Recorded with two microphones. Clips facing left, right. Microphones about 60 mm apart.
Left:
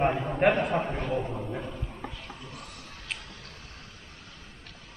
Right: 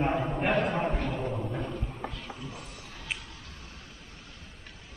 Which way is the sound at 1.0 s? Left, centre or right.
Centre.